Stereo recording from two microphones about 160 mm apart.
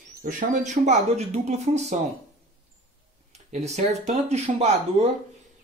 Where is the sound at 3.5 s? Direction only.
45° right (ahead or behind).